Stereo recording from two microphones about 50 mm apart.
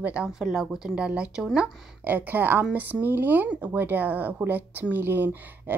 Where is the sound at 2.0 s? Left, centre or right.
Right.